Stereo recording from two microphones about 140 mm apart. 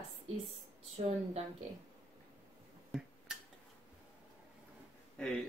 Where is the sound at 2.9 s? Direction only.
Centre (ahead or behind).